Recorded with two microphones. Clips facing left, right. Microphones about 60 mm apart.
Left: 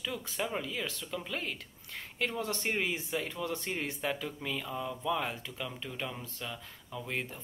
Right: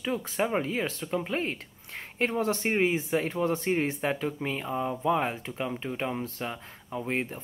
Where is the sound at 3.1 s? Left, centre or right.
Right.